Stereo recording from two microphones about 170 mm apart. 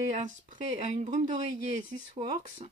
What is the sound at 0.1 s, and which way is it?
Speech, 50° right (ahead or behind).